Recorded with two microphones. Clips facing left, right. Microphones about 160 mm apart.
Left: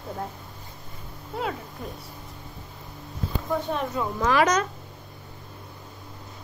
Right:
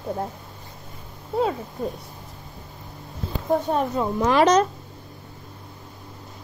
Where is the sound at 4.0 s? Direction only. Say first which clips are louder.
Right 3 dB; 30° right (ahead or behind).